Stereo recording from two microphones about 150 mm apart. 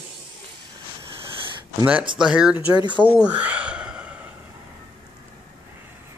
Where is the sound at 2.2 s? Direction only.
5° right (ahead or behind).